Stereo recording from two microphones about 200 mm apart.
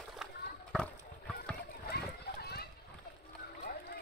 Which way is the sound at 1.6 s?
50° left (ahead or behind).